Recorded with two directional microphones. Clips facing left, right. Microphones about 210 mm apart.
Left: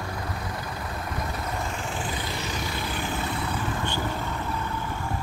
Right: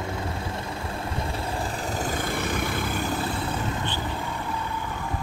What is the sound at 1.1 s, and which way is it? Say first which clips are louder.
Vehicle: right 1 dB; 30° right (ahead or behind).